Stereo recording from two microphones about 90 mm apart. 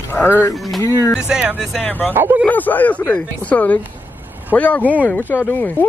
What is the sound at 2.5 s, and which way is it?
Speech, 20° left (ahead or behind).